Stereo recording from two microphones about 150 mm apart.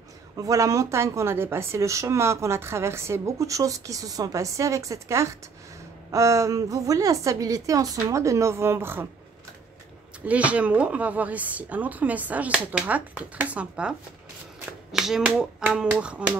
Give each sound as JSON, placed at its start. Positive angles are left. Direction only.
{"t": 0.4, "sound": "speech", "side_deg": -20}
{"t": 10.2, "sound": "speech", "side_deg": -10}